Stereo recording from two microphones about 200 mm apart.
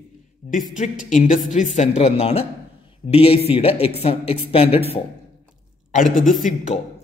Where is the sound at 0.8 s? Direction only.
40° left (ahead or behind).